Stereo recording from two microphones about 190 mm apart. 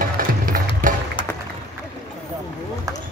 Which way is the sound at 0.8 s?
45° right (ahead or behind).